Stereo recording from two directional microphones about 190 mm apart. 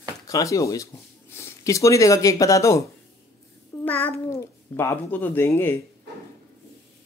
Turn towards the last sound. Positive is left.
turn(degrees=10)  # may be behind; listen again after turning